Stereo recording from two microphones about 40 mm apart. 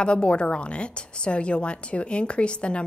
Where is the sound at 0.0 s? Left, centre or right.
Left.